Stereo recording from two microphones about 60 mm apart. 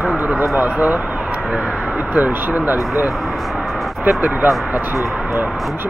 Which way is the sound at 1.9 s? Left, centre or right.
Right.